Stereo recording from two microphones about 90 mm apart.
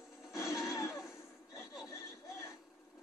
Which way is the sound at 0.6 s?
35° left (ahead or behind).